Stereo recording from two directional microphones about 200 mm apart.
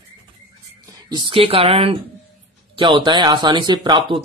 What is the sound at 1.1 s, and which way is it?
A man's voice, 25° right (ahead or behind).